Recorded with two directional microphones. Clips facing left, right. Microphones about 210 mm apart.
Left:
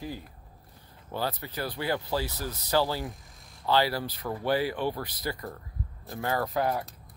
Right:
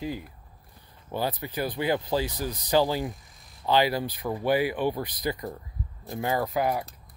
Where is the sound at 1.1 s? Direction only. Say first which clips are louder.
Right 3 dB; 15° right (ahead or behind).